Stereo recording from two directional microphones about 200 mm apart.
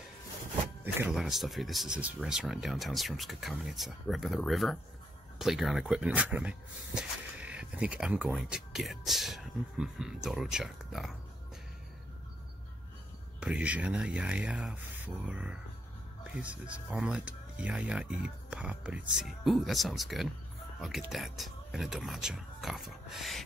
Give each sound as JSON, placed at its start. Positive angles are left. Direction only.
{"t": 0.9, "sound": "speech", "side_deg": -5}
{"t": 13.4, "sound": "speech", "side_deg": -5}